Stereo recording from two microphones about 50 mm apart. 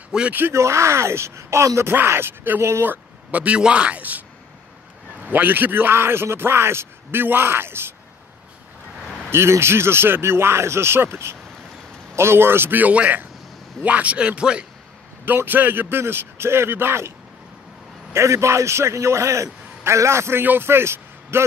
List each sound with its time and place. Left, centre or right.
0.1 s speech: centre
0.5 s a man's voice: right
1.9 s a man's voice: right
2.8 s a sound: right
3.3 s speech: right
5.2 s a man's voice: right
9.3 s a man's voice: right
12.7 s speech: right
15.2 s a man's voice: right
18.1 s a man's voice: right
20.4 s a man's voice: right